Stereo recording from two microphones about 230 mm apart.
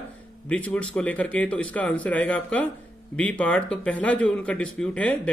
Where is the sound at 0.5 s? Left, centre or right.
Centre.